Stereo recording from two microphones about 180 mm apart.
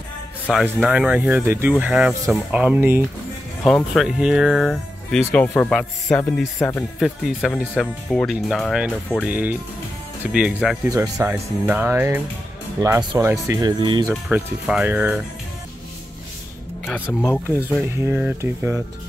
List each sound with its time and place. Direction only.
0.5 s speech: centre (ahead or behind)
3.6 s speech: centre (ahead or behind)
5.3 s speech: 10° left (ahead or behind)
7.0 s speech: centre (ahead or behind); by 14.1 s 25° right (ahead or behind)
14.3 s speech: 5° right (ahead or behind)
17.0 s speech: centre (ahead or behind)
17.3 s speech: 15° left (ahead or behind)
18.0 s speech: 10° right (ahead or behind)